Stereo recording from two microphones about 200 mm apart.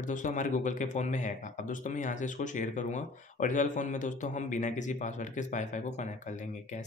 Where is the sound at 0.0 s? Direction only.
40° left (ahead or behind).